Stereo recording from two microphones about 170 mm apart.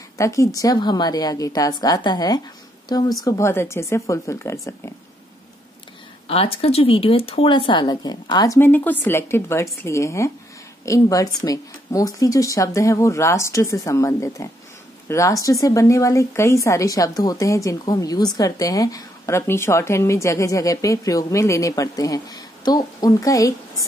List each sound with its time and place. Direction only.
0.2 s speech: 20° left (ahead or behind)
6.2 s speech: 35° left (ahead or behind)
8.5 s speech: 10° left (ahead or behind)